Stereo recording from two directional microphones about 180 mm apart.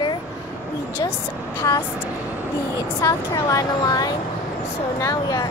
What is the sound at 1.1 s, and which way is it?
A woman's voice, 15° left (ahead or behind).